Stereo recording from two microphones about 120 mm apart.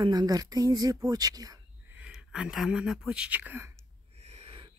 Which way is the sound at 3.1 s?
10° right (ahead or behind).